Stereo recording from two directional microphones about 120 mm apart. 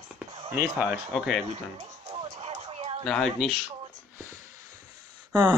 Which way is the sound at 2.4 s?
55° right (ahead or behind).